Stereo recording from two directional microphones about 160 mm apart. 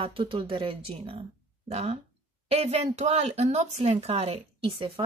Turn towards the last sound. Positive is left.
turn(degrees=-35)  # may be behind; listen again after turning